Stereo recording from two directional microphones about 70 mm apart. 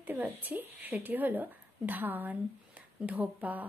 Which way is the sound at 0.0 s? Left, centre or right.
Right.